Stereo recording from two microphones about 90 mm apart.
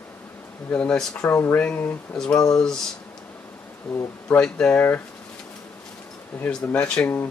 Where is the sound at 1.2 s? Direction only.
25° left (ahead or behind).